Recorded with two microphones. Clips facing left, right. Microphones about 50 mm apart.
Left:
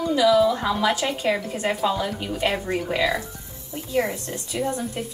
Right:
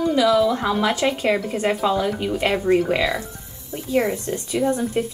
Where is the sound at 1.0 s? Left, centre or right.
Centre.